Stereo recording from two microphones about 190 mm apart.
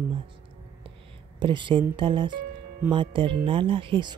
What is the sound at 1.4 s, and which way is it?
Speech, 25° right (ahead or behind).